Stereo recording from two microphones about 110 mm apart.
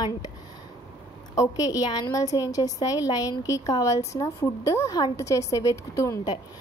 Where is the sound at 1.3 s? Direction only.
35° left (ahead or behind).